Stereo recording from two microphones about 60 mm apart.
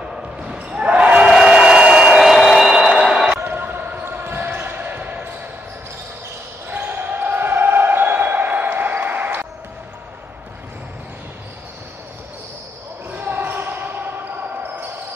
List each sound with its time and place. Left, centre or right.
0.1 s basketball bounce: centre
1.3 s a sound: centre
3.4 s basketball bounce: right
6.7 s basketball bounce: right
13.1 s basketball bounce: right